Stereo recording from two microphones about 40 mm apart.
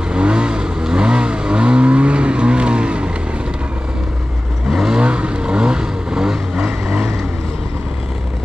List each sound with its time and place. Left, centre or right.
0.1 s vehicle: right
4.6 s vehicle: centre
4.9 s vehicle: right